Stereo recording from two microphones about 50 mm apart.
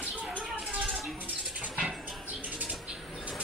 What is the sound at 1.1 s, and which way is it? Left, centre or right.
Bird, right.